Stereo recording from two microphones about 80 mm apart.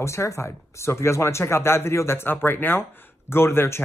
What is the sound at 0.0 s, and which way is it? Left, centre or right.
Speech, left.